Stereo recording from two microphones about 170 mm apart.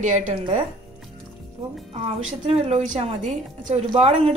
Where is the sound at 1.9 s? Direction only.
35° right (ahead or behind).